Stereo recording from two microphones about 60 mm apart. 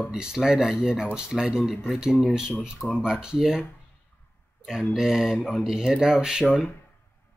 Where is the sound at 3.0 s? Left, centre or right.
Centre.